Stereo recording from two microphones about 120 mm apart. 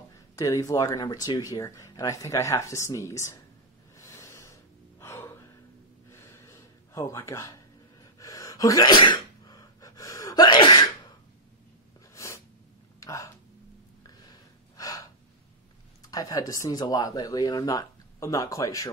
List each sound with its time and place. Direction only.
0.4 s speech: 30° left (ahead or behind)
4.0 s a sound: 25° left (ahead or behind)
5.0 s gasp: 20° left (ahead or behind)
8.2 s sneeze: 25° left (ahead or behind)
12.1 s sneeze: 25° left (ahead or behind)
13.0 s a sound: 25° left (ahead or behind)
14.8 s gasp: 30° left (ahead or behind)
16.1 s speech: 30° left (ahead or behind)